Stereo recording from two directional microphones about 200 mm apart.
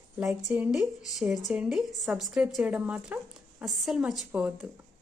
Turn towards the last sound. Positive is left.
turn(degrees=-5)  # may be behind; listen again after turning